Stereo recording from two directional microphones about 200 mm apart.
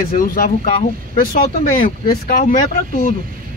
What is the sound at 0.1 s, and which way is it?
Speech, 45° left (ahead or behind).